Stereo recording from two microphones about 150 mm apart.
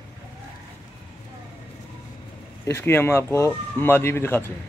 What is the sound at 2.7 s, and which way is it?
Speech, 15° left (ahead or behind).